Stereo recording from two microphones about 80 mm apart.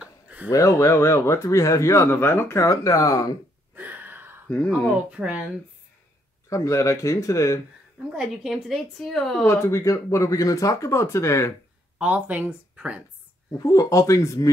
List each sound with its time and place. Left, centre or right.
0.0 s a sound: centre
0.5 s speech: left
3.7 s a sound: right
4.9 s speech: centre
6.5 s speech: left
8.1 s a woman's voice: centre
9.5 s speech: left
12.0 s speech: centre
13.5 s speech: left